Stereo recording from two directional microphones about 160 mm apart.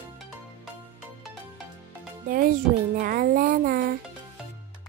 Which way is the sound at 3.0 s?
65° right (ahead or behind).